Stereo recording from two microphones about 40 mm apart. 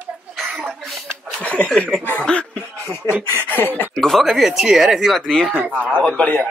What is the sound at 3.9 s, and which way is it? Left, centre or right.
Speech, centre.